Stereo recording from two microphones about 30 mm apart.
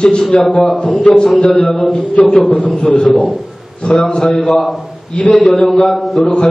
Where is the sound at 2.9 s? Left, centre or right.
Left.